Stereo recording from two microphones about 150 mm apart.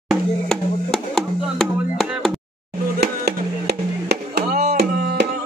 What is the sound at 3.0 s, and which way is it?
Music, 90° right.